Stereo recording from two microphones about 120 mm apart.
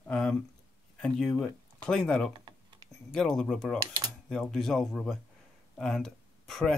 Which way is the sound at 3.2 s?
5° left (ahead or behind).